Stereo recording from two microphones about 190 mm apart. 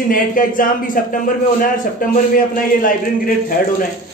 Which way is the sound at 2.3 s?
45° left (ahead or behind).